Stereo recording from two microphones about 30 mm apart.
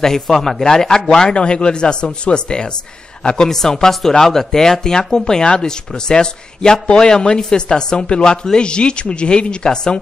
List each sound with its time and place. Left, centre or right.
0.0 s speech: centre
1.3 s speech: left
3.4 s speech: centre
8.5 s speech: left